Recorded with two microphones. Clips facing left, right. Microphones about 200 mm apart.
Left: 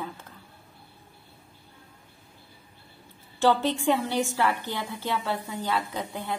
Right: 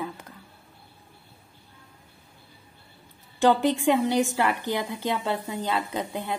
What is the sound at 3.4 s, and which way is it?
A woman's voice, 15° right (ahead or behind).